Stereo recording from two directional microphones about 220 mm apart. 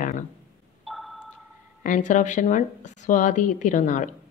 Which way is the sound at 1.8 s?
35° left (ahead or behind).